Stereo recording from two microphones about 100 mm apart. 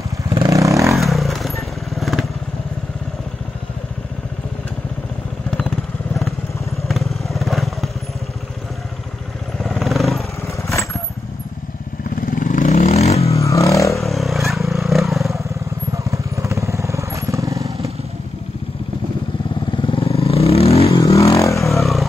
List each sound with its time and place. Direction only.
0.5 s vehicle: 30° right (ahead or behind)
0.9 s motorcycle: centre (ahead or behind)
6.9 s motorcycle: centre (ahead or behind)
9.6 s vehicle: centre (ahead or behind)
10.4 s vehicle: 30° left (ahead or behind)
12.7 s vehicle: 90° left
13.3 s vehicle: 30° left (ahead or behind)
14.0 s motorcycle: centre (ahead or behind)
15.9 s vehicle: 30° right (ahead or behind)
19.7 s vehicle: 60° left (ahead or behind); by 21.0 s 90° left
21.0 s vehicle: 30° left (ahead or behind)
21.7 s motorcycle: centre (ahead or behind)